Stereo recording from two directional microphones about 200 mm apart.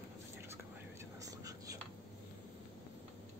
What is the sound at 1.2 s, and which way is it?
Whispering, 15° right (ahead or behind).